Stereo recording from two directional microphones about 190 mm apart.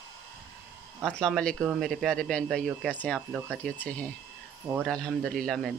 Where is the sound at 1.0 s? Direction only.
Centre (ahead or behind).